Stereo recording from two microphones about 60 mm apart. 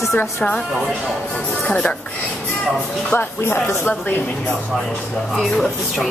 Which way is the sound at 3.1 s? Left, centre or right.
Left.